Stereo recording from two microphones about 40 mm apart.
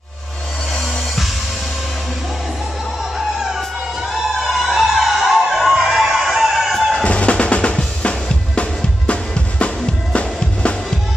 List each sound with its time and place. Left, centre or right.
4.5 s music: centre
7.1 s drum: left
10.1 s music: left